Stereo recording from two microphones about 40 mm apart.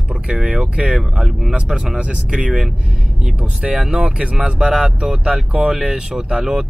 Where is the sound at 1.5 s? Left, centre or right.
Right.